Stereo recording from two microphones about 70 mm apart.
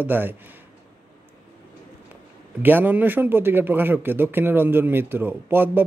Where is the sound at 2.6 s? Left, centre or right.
Right.